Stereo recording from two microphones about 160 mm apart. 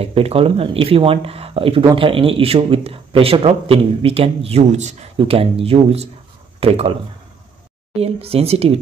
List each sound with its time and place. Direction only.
0.0 s speech: 35° right (ahead or behind)
8.0 s speech: 40° right (ahead or behind)